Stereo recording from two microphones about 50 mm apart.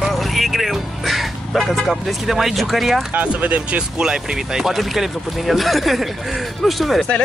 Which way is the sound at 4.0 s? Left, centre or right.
Centre.